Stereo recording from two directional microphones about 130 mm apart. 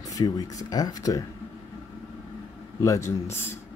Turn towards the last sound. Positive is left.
turn(degrees=20)  # may be behind; listen again after turning